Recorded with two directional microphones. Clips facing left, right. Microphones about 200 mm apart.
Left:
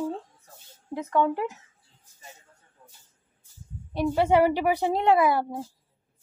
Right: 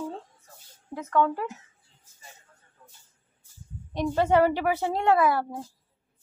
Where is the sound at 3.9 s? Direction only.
10° left (ahead or behind).